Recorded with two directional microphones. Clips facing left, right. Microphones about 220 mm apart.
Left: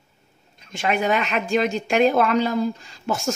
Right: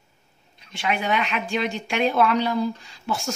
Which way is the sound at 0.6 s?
45° left (ahead or behind).